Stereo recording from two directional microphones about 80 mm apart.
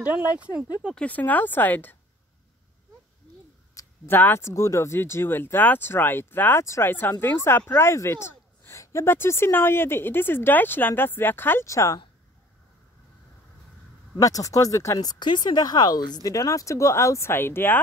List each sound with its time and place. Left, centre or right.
0.0 s speech: centre
0.9 s speech: centre
3.8 s a sound: left
4.1 s speech: left
6.6 s speech: left
6.9 s speech: left
11.6 s speech: left
14.2 s speech: left
15.0 s speech: left